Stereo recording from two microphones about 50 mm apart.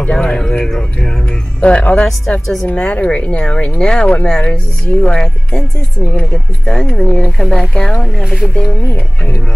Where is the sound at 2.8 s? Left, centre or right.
Left.